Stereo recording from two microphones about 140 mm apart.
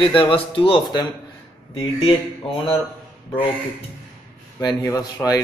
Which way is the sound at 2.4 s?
40° left (ahead or behind).